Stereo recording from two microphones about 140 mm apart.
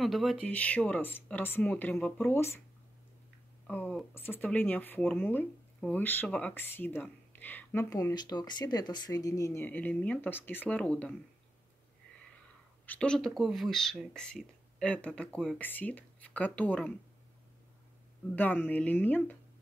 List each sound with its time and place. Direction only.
0.0 s speech: centre (ahead or behind)
0.5 s speech: 10° left (ahead or behind)
3.6 s speech: 10° left (ahead or behind)
7.9 s speech: 25° left (ahead or behind); by 11.1 s 10° left (ahead or behind)
12.9 s speech: 5° left (ahead or behind)
18.3 s speech: 10° left (ahead or behind)